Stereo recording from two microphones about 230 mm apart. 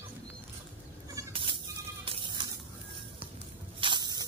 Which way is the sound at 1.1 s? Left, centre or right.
Right.